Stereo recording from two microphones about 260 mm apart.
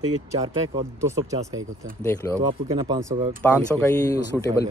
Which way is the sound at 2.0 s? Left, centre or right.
Centre.